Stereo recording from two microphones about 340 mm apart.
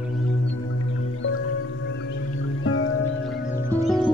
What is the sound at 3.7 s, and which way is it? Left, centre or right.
Music, centre.